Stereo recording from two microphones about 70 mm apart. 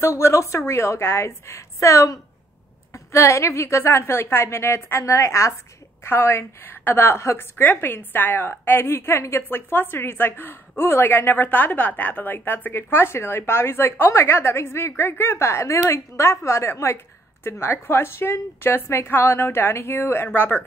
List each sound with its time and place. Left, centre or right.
0.0 s a woman's voice: left
6.0 s a woman's voice: left